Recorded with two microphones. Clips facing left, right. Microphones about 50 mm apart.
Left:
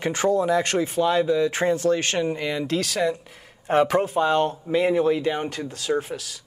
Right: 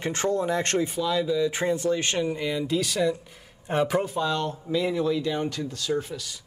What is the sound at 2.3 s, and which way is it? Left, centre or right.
Speech, left.